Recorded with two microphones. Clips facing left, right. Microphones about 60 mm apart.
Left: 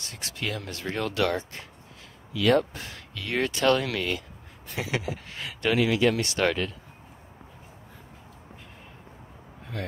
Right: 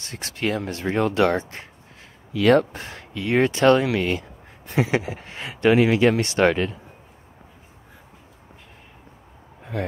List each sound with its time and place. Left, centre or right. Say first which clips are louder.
0.0 s speech: right 7 dB; right
0.6 s speech: right 8 dB; right
2.3 s speech: right 5 dB; right
3.1 s speech: right 8 dB; right
9.7 s speech: right 7 dB; centre